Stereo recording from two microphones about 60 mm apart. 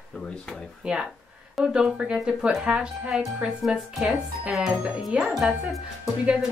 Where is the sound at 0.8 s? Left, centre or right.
Centre.